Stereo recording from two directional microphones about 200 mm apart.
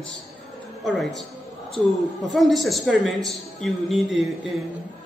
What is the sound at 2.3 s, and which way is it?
A man's voice, centre (ahead or behind).